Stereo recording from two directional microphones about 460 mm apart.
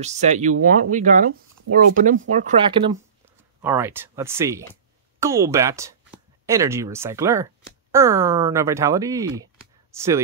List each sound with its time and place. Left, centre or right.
0.0 s speech: centre